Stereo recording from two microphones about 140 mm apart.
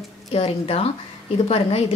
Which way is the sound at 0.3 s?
45° left (ahead or behind).